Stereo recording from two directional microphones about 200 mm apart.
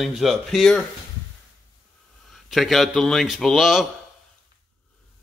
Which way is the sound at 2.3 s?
Centre (ahead or behind).